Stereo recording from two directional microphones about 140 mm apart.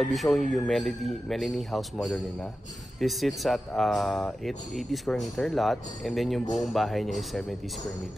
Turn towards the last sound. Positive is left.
turn(degrees=0)  # may be behind; listen again after turning